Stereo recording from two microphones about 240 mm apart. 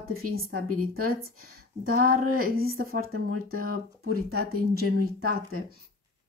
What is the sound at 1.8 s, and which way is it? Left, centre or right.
Speech, right.